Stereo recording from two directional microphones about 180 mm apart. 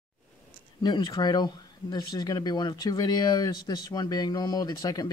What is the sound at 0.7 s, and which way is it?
Speech, 25° left (ahead or behind).